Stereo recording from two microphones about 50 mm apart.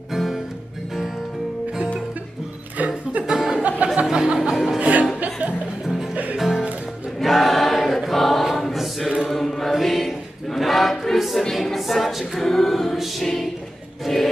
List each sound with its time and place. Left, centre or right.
0.1 s music: centre
3.3 s music: centre
4.7 s music: right
6.3 s music: centre
7.2 s choir: centre
14.0 s music: centre